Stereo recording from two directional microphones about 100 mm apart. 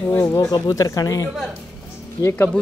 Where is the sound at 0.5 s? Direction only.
35° left (ahead or behind).